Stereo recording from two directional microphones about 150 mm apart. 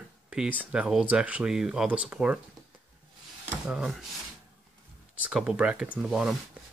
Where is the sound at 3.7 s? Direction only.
5° right (ahead or behind).